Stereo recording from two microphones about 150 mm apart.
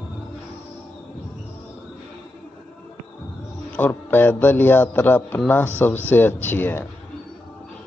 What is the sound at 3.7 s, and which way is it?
A man's voice, 10° left (ahead or behind).